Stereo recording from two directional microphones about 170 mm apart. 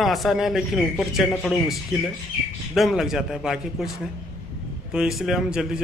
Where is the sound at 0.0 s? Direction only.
Centre (ahead or behind).